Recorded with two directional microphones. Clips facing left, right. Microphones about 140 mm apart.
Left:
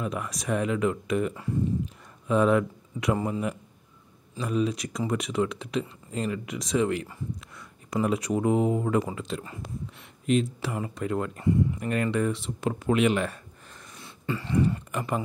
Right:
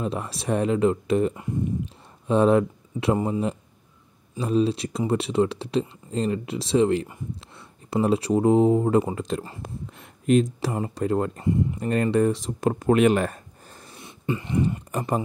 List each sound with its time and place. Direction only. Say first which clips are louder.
0.0 s speech: right 3 dB; 30° right (ahead or behind)
9.1 s speech: right 5 dB; 40° right (ahead or behind)
13.9 s a sound: right 4 dB; 20° right (ahead or behind)
14.9 s speech: right 4 dB; 35° right (ahead or behind)